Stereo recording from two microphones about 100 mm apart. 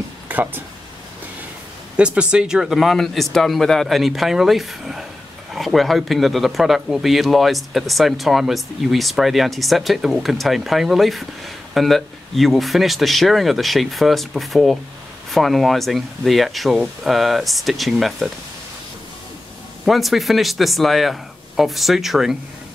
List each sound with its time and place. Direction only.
0.3 s a sound: 15° right (ahead or behind)
2.0 s speech: 10° right (ahead or behind)
19.8 s speech: centre (ahead or behind)